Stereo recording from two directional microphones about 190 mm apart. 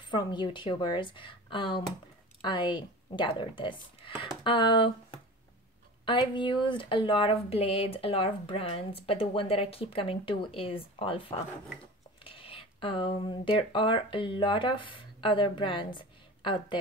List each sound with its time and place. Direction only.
0.1 s speech: 25° left (ahead or behind)